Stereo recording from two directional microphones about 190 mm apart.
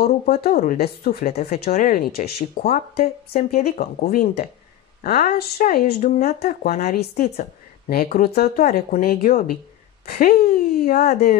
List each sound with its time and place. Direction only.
0.0 s speech: 50° left (ahead or behind)